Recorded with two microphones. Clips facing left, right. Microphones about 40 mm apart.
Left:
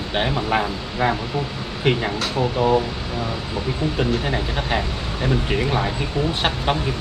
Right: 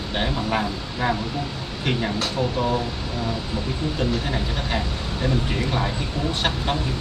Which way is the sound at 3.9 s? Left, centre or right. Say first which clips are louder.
Left 2 dB; left.